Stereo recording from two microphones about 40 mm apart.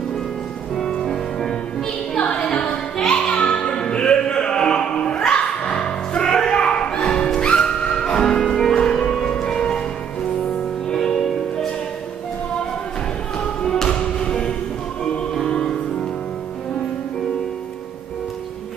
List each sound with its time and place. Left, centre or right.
0.8 s music: centre
6.2 s a sound: centre
7.3 s music: left
8.5 s music: centre
10.9 s music: centre
13.7 s music: centre
15.5 s music: left